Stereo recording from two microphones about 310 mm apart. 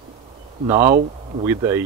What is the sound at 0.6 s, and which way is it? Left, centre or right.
Speech, centre.